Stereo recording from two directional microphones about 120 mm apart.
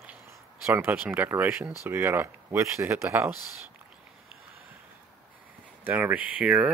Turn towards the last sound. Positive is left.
turn(degrees=-5)  # may be behind; listen again after turning